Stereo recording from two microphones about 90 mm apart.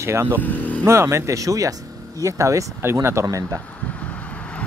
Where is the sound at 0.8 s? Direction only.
30° right (ahead or behind).